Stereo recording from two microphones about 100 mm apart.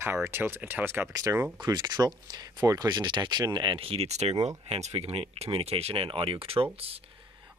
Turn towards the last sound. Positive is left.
turn(degrees=-80)